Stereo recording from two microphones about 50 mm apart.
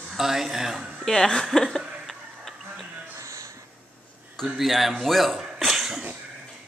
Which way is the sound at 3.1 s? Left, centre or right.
Right.